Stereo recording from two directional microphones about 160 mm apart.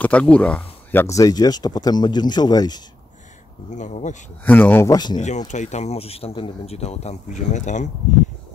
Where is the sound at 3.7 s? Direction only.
50° left (ahead or behind).